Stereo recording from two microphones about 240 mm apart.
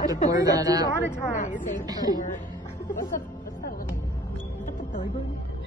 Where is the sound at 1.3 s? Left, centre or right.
Left.